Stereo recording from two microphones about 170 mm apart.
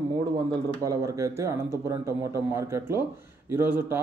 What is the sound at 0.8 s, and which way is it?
Speech, 20° right (ahead or behind).